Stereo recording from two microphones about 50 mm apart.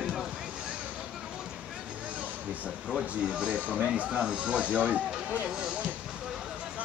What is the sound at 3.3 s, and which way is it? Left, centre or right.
Speech, centre.